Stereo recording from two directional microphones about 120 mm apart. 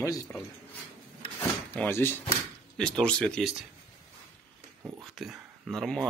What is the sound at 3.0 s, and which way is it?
Speech, 10° left (ahead or behind).